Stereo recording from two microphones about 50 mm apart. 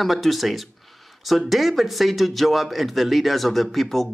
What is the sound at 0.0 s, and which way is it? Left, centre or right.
A man's voice, centre.